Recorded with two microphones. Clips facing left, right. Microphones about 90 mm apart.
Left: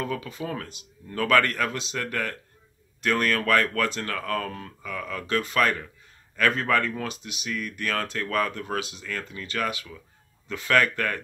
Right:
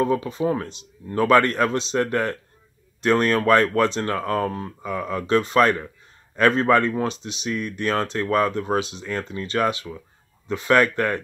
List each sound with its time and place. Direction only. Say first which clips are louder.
0.0 s speech: right 9 dB; 30° right (ahead or behind)